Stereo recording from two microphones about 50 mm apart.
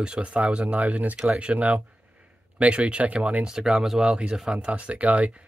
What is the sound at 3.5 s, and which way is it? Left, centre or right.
Speech, centre.